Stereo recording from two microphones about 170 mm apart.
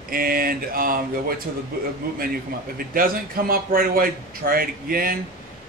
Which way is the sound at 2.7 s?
60° right (ahead or behind).